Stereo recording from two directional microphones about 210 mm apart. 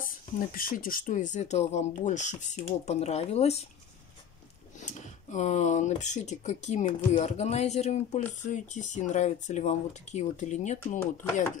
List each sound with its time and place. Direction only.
0.0 s speech: 40° left (ahead or behind)
4.7 s speech: 35° left (ahead or behind)